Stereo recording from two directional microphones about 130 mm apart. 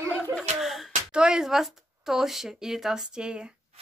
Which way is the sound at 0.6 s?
Centre (ahead or behind).